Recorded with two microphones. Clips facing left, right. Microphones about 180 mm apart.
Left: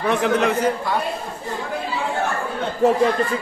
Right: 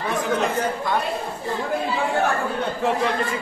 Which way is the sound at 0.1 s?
75° left (ahead or behind).